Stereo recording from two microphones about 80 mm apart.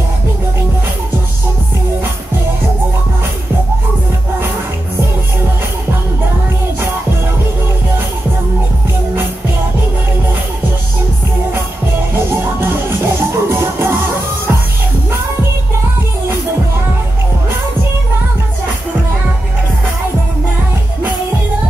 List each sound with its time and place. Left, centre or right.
12.2 s music: right